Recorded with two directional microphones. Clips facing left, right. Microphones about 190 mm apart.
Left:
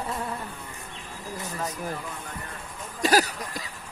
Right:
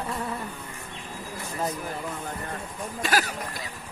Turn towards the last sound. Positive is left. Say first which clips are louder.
# left 4 dB
turn(degrees=40)  # may be behind; listen again after turning